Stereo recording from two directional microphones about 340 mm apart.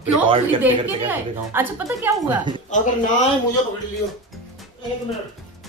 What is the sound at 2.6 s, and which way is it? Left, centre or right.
Speech, left.